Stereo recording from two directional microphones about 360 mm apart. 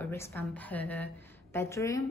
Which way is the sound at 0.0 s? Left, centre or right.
Centre.